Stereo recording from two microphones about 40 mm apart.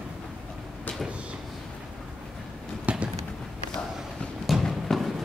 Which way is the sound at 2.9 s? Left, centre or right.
Right.